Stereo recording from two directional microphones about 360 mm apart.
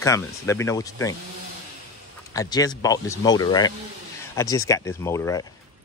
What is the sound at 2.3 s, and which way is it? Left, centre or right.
Speech, centre.